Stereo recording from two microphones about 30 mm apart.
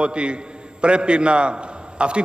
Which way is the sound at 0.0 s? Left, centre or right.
Right.